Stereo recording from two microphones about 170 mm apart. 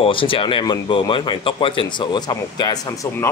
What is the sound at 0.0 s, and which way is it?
Speech, 30° left (ahead or behind).